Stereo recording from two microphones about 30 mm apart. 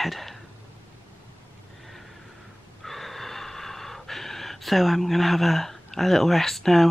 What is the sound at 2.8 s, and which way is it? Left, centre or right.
Gasp, centre.